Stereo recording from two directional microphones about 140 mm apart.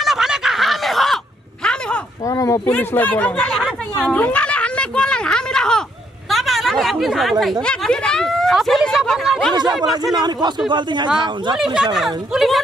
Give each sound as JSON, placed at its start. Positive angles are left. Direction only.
{"t": 0.0, "sound": "a sound", "side_deg": -5}
{"t": 2.2, "sound": "a sound", "side_deg": 25}
{"t": 2.6, "sound": "chatter", "side_deg": 10}
{"t": 7.6, "sound": "speech", "side_deg": 5}
{"t": 9.5, "sound": "speech", "side_deg": -30}
{"t": 11.5, "sound": "speech", "side_deg": -5}